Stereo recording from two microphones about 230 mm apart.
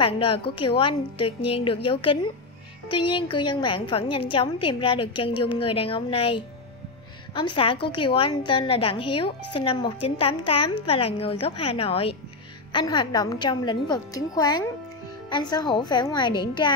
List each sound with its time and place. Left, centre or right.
0.0 s a woman's voice: left
7.5 s a woman's voice: left